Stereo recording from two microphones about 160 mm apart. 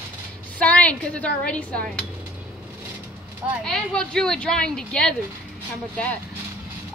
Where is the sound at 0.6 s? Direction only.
10° left (ahead or behind).